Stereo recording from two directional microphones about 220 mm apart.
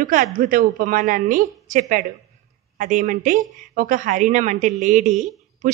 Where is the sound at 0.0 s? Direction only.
40° right (ahead or behind).